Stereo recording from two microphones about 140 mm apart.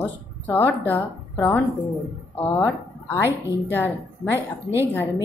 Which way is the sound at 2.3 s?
15° left (ahead or behind).